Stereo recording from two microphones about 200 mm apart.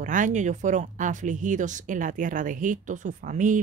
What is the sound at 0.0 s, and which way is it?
Speech, 40° right (ahead or behind).